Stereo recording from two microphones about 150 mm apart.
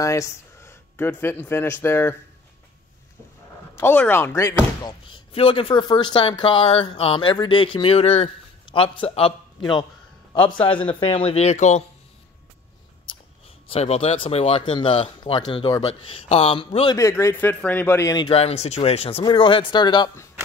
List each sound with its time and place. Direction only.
0.0 s speech: 20° left (ahead or behind)
3.7 s speech: 15° left (ahead or behind)
5.1 s speech: 35° left (ahead or behind)
13.7 s speech: 45° left (ahead or behind)
16.9 s speech: 20° left (ahead or behind)
18.1 s speech: 35° left (ahead or behind)